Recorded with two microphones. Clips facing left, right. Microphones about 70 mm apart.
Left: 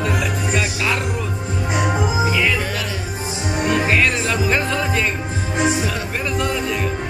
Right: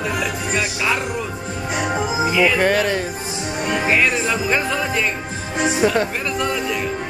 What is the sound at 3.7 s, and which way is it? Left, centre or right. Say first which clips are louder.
Music: even; centre.